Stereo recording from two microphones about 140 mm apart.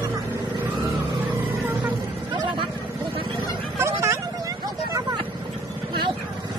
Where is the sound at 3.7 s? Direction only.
20° right (ahead or behind).